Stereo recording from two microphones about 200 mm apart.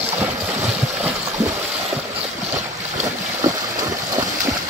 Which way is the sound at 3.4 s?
15° right (ahead or behind).